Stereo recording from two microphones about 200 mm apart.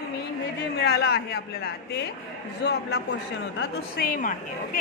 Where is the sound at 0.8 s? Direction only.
55° left (ahead or behind).